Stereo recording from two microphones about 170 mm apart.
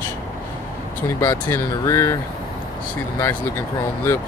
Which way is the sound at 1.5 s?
15° left (ahead or behind).